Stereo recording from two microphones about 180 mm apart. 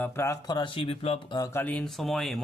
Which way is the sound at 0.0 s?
15° left (ahead or behind).